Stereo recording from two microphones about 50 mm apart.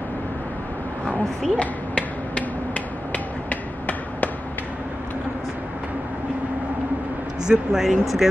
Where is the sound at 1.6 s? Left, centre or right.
Left.